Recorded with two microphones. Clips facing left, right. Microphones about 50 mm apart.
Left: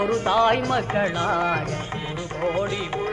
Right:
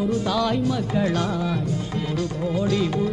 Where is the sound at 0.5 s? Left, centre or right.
Left.